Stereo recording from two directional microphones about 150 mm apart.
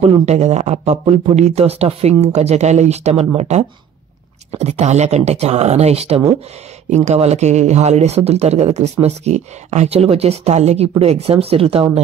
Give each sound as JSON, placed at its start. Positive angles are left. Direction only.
{"t": 0.0, "sound": "speech", "side_deg": -45}